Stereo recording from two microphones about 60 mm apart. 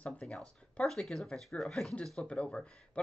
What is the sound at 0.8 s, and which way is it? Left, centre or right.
Speech, centre.